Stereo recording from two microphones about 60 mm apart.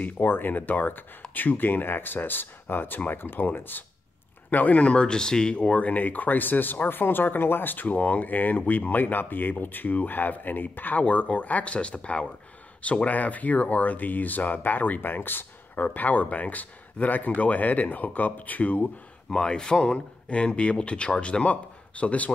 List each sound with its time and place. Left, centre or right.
0.0 s speech: left
19.3 s speech: centre